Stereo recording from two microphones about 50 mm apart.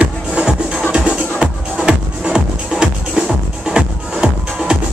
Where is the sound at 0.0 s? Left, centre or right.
Right.